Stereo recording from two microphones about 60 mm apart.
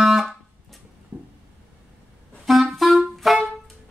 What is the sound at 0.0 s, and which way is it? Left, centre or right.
Music, centre.